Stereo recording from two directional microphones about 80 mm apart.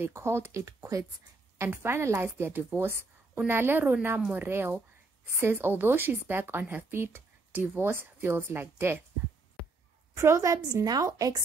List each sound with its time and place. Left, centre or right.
0.0 s speech: right
1.6 s a woman's voice: right
10.1 s a woman's voice: right